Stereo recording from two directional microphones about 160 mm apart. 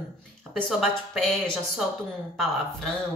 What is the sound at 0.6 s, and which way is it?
Speech, centre (ahead or behind).